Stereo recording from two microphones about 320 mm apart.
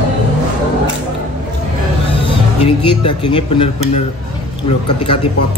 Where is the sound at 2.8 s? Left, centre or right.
Centre.